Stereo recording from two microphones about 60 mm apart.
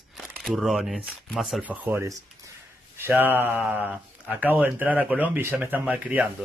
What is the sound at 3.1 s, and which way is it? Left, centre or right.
Speech, right.